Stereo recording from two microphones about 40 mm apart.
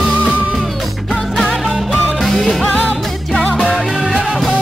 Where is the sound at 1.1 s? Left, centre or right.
Centre.